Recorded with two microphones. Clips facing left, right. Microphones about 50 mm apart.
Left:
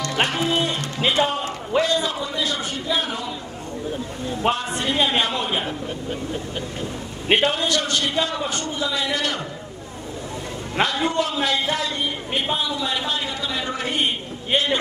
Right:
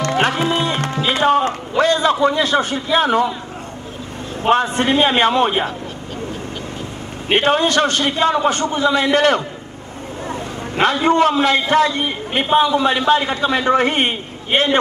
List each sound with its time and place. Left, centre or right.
0.0 s music: right
1.8 s a sound: right
4.5 s a man's voice: right
7.3 s a man's voice: right
10.8 s a man's voice: right